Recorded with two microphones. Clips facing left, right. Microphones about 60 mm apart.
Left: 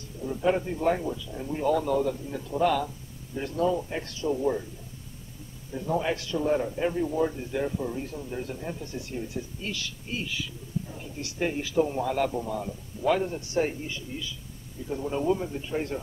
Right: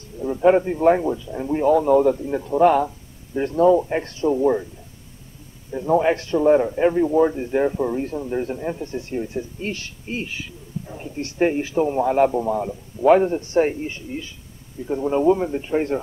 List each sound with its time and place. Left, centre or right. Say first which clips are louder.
0.2 s a man's voice: right 10 dB; right
2.0 s a man's voice: right 10 dB; right
5.7 s a man's voice: right 9 dB; right